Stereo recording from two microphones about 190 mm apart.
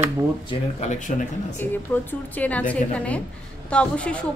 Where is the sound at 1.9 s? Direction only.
10° left (ahead or behind).